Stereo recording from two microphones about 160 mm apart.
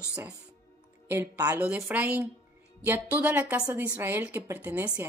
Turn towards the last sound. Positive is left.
turn(degrees=-10)  # may be behind; listen again after turning